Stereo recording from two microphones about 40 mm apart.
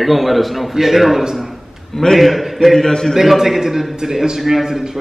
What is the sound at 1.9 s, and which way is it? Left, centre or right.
Speech, centre.